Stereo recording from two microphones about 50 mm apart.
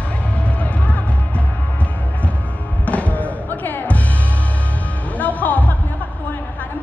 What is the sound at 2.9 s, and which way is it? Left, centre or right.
Music, left.